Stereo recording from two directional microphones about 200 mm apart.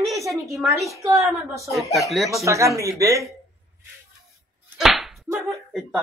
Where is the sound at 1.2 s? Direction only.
15° right (ahead or behind).